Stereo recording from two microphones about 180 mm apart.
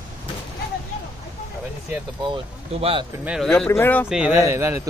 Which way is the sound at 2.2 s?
30° right (ahead or behind).